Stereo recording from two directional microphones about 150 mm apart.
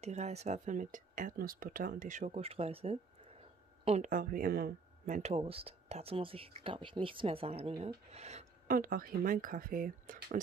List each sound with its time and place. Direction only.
0.0 s speech: 45° right (ahead or behind)
4.1 s speech: 65° right (ahead or behind)
5.3 s speech: 40° right (ahead or behind)
8.6 s speech: 70° right (ahead or behind)